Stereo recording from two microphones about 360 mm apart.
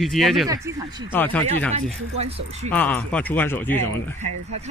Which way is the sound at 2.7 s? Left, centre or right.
Centre.